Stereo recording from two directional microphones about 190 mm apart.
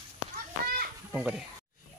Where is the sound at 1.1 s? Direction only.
5° right (ahead or behind).